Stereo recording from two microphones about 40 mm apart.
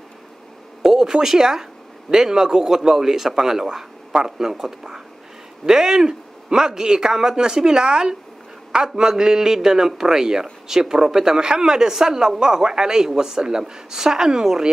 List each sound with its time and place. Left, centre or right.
0.8 s a man's voice: centre